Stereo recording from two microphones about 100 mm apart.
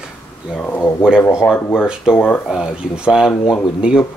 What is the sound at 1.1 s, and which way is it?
Speech, 20° left (ahead or behind).